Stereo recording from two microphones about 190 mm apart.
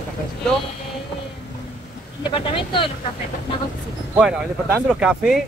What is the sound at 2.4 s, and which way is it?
Speech, 25° left (ahead or behind).